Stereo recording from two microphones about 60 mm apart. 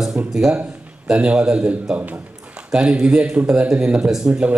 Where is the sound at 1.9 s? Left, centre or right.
Right.